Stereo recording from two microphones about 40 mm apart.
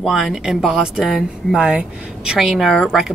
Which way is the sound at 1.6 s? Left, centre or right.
Right.